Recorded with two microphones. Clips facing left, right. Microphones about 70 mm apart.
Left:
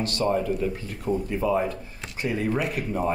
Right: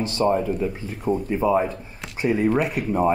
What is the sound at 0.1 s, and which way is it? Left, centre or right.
Speech, centre.